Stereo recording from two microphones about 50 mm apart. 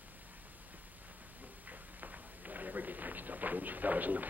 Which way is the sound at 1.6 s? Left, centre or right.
Right.